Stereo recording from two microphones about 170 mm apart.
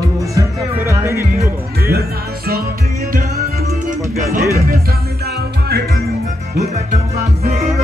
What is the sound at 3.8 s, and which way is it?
Music, 50° right (ahead or behind).